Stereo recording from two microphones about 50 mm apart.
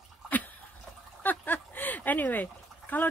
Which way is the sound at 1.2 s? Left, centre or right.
Left.